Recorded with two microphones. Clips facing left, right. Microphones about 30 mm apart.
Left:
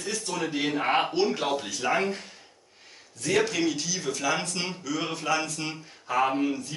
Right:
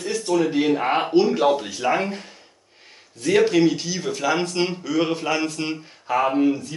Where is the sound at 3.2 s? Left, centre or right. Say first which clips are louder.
Right 8 dB; right.